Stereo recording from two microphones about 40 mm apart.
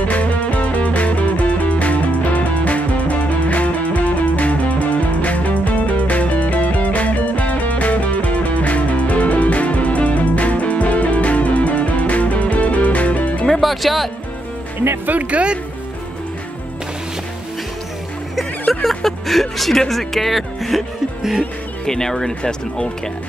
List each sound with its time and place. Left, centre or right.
0.0 s music: left
13.5 s music: centre
15.0 s speech: right
18.3 s a sound: centre
19.9 s speech: centre
21.2 s music: centre
21.8 s speech: centre